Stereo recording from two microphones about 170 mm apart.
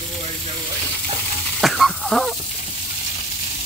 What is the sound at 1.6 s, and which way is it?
Sizzle, centre (ahead or behind).